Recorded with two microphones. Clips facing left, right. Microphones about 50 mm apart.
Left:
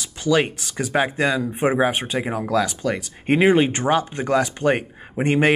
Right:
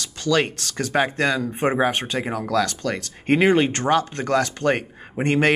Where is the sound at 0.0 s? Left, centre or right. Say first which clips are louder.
Left 1 dB; centre.